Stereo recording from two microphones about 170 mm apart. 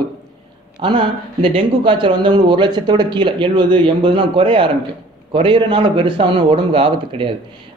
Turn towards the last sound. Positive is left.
turn(degrees=-30)  # may be behind; listen again after turning